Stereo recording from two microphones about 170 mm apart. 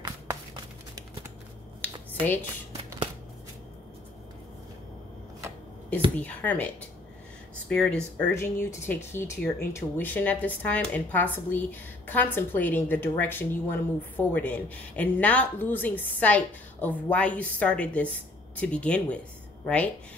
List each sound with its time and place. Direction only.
1.8 s finger snapping: 10° left (ahead or behind)
6.1 s a woman's voice: 10° left (ahead or behind)